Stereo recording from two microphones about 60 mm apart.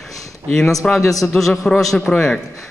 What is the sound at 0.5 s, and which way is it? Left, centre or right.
A man's voice, centre.